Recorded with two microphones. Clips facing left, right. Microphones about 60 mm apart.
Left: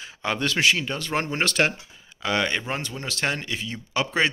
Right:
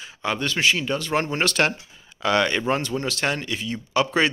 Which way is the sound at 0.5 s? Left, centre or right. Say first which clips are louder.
Even; left.